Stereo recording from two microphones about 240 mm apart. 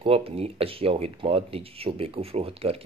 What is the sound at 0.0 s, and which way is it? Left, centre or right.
Speech, right.